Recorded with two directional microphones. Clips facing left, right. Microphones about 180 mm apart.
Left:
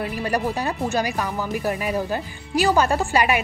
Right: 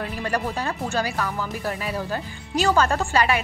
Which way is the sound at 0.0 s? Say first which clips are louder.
Left 3 dB; 10° left (ahead or behind).